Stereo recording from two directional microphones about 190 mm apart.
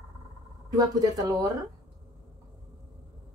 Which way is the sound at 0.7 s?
20° right (ahead or behind).